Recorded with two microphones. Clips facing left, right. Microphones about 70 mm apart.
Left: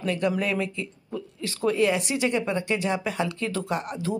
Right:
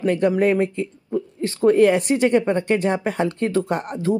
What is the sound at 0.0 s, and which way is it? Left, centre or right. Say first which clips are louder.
Speech: right 8 dB; right.